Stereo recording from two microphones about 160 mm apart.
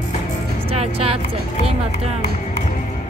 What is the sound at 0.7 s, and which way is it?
Music, 35° right (ahead or behind).